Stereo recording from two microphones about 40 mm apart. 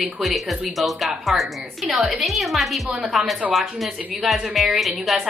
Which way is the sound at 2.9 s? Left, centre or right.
Centre.